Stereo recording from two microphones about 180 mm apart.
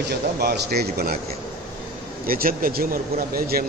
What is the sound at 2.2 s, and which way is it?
Speech, 55° right (ahead or behind).